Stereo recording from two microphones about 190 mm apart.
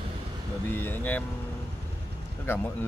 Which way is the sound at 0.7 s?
10° left (ahead or behind).